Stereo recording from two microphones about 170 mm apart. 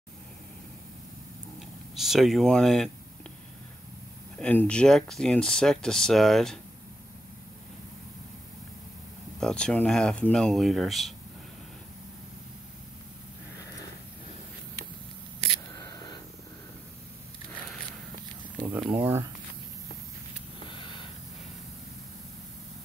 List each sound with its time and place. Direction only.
2.0 s speech: centre (ahead or behind)
4.4 s speech: 5° left (ahead or behind)
9.4 s speech: 5° left (ahead or behind)
15.8 s a sound: 25° left (ahead or behind)
18.7 s speech: 10° right (ahead or behind)
20.6 s a sound: 30° left (ahead or behind)